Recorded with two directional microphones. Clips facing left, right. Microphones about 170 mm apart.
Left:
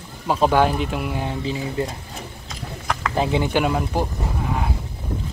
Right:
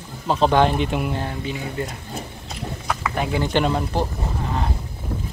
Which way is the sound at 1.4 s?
30° left (ahead or behind).